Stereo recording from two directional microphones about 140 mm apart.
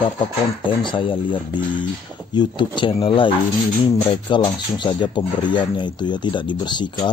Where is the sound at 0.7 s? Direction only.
35° left (ahead or behind).